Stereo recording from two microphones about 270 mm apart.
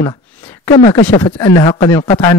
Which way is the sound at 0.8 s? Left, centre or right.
Left.